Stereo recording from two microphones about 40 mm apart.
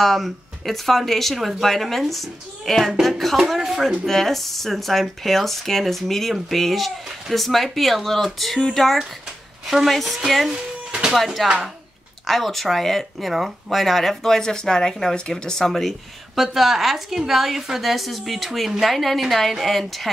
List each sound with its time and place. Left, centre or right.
0.0 s speech: centre
4.0 s speech: centre
9.7 s a woman's voice: centre
12.3 s speech: centre
16.3 s a woman's voice: centre